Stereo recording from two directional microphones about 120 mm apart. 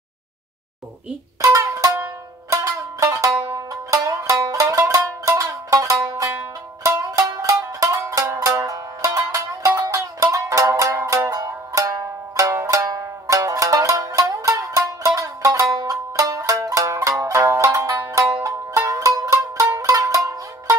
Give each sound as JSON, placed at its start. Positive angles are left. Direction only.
{"t": 1.4, "sound": "music", "side_deg": -25}